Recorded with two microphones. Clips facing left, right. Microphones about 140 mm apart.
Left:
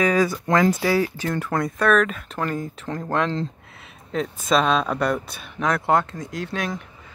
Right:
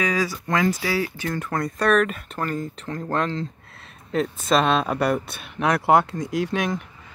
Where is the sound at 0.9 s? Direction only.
40° left (ahead or behind).